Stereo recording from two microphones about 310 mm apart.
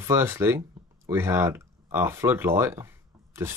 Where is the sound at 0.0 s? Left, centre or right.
Centre.